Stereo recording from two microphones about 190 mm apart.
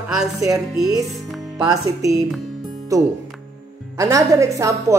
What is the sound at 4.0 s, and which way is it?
Speech, 15° right (ahead or behind).